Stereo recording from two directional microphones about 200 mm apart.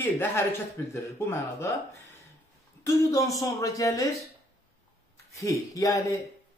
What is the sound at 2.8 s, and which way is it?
Speech, 15° left (ahead or behind).